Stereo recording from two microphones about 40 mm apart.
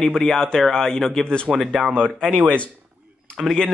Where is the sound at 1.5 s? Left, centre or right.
Centre.